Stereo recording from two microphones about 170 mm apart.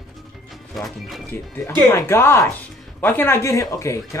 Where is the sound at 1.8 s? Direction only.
15° left (ahead or behind).